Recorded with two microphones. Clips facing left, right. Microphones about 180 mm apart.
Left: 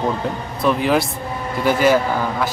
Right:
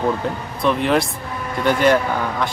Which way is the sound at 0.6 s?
Centre (ahead or behind).